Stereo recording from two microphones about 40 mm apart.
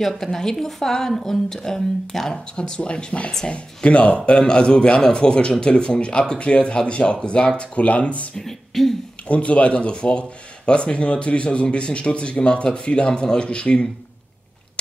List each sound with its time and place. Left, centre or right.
0.0 s a woman's voice: centre
2.5 s speech: left
8.4 s a woman's voice: centre
9.3 s speech: left